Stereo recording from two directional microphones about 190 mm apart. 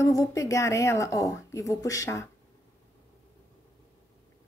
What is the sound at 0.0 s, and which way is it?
A woman's voice, 15° left (ahead or behind).